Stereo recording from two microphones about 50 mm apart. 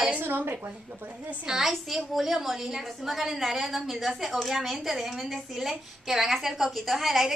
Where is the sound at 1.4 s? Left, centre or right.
Centre.